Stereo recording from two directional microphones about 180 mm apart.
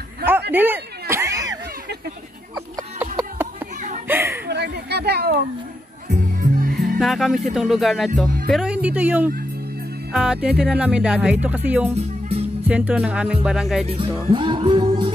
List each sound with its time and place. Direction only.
0.5 s a sound: 10° right (ahead or behind)
3.0 s a sound: 10° right (ahead or behind)
4.5 s a sound: 65° right (ahead or behind)
6.0 s music: 40° right (ahead or behind)
6.8 s speech: centre (ahead or behind)
7.5 s music: centre (ahead or behind)
11.9 s music: 35° right (ahead or behind)
12.6 s music: 5° right (ahead or behind)
14.3 s music: 25° right (ahead or behind)